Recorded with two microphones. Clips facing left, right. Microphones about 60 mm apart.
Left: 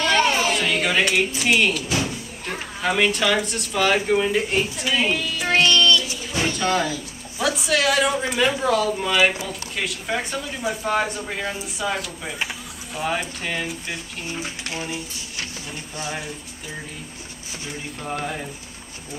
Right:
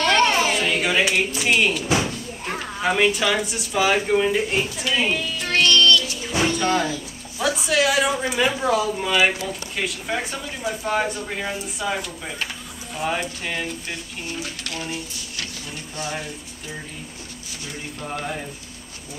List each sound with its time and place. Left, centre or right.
0.0 s a sound: centre
2.0 s speech: centre
5.4 s child singing: centre
6.4 s a sound: centre
7.3 s speech: centre
14.2 s speech: left
18.0 s speech: centre